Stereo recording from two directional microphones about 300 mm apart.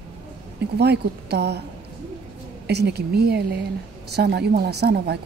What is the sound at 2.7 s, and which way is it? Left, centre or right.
A woman's voice, right.